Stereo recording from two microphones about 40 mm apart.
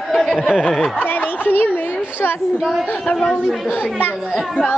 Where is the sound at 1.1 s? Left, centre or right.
Left.